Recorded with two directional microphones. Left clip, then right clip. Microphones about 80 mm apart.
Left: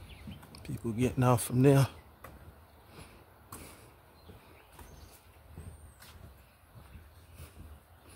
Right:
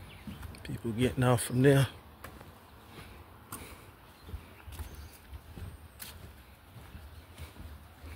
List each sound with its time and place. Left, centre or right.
0.6 s speech: left